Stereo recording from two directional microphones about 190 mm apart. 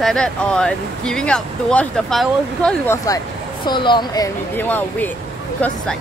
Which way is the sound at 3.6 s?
25° left (ahead or behind).